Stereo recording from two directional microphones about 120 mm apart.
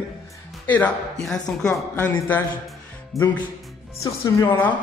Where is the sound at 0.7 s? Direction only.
15° left (ahead or behind).